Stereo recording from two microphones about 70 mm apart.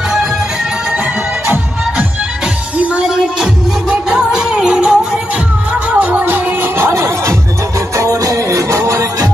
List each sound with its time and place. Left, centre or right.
2.4 s music: centre
5.7 s music: right
6.9 s music: right